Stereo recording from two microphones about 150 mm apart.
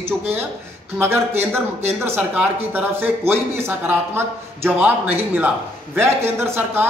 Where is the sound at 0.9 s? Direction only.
15° right (ahead or behind).